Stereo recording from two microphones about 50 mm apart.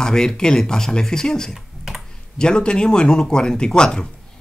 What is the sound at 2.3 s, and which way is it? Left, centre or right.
Speech, centre.